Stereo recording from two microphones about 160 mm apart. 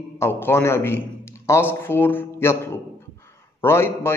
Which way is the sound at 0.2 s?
15° left (ahead or behind).